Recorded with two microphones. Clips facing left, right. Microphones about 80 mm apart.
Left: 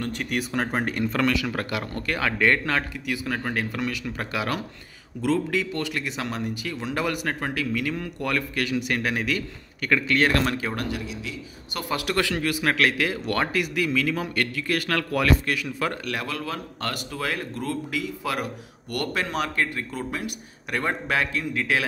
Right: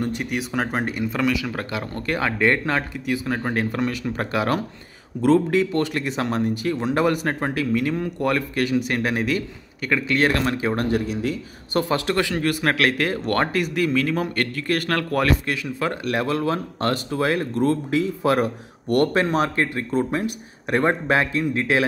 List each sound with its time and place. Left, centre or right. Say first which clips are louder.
0.0 s speech: right 3 dB; centre
1.8 s speech: right 3 dB; right
10.9 s speech: right 9 dB; right
11.9 s speech: left 1 dB; right
12.4 s speech: right 2 dB; right
15.4 s speech: right 2 dB; right